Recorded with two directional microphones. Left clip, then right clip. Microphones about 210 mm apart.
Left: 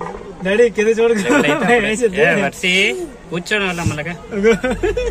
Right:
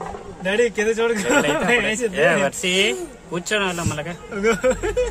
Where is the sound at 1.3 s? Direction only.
20° right (ahead or behind).